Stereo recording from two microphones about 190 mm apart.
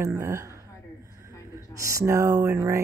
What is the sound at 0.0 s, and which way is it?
Speech, 15° right (ahead or behind).